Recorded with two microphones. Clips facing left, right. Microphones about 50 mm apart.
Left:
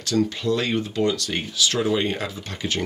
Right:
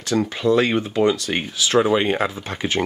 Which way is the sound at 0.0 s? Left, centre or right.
Right.